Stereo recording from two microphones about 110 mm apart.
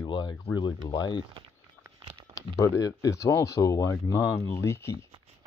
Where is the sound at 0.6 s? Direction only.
40° left (ahead or behind).